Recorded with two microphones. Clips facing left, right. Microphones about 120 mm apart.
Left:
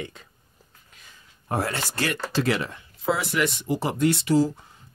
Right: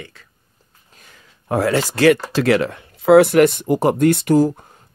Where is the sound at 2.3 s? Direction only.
75° right (ahead or behind).